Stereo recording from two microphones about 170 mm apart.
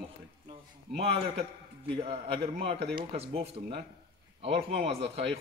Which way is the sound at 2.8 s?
75° right (ahead or behind).